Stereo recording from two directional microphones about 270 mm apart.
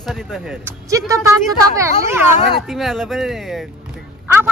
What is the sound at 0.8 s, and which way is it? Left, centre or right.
A woman's voice, centre.